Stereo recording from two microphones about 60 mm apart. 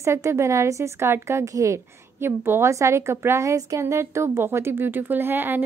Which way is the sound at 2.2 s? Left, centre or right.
Right.